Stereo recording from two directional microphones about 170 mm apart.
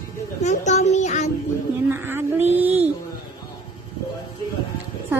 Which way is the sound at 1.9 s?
10° right (ahead or behind).